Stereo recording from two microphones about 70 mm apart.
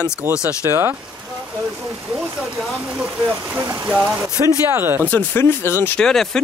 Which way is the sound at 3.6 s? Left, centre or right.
Centre.